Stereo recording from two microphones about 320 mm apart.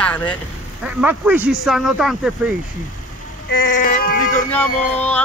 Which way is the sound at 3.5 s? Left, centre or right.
Left.